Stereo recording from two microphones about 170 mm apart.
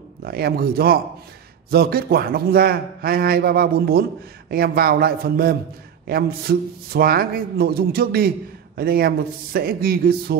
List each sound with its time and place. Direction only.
0.2 s a man's voice: 65° right (ahead or behind)